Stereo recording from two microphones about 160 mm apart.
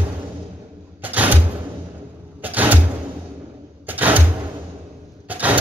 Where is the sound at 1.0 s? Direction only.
10° right (ahead or behind).